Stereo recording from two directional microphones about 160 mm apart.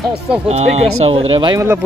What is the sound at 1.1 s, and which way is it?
Speech, 35° right (ahead or behind).